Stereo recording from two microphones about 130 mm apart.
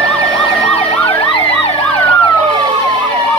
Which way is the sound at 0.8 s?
45° left (ahead or behind).